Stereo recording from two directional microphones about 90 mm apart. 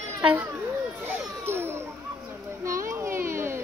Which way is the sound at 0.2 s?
20° right (ahead or behind).